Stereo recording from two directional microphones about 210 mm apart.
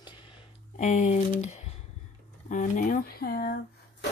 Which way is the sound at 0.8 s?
35° left (ahead or behind).